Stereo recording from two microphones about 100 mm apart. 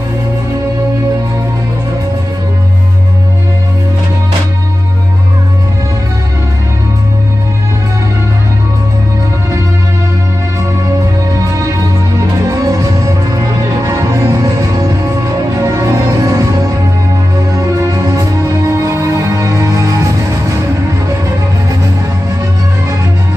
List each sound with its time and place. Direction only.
12.4 s music: 35° right (ahead or behind)
17.6 s music: 35° right (ahead or behind)